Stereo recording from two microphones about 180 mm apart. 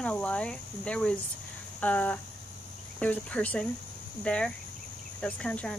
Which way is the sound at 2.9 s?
10° left (ahead or behind).